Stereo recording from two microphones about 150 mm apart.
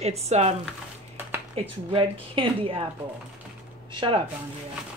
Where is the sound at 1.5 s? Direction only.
35° right (ahead or behind).